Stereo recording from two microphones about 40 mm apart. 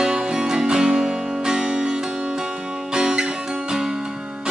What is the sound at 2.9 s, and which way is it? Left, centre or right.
Music, centre.